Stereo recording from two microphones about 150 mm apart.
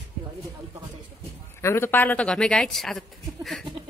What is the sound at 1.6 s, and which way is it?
Speech, 15° left (ahead or behind).